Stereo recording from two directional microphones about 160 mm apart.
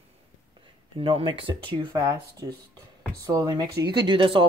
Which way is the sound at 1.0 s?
35° right (ahead or behind).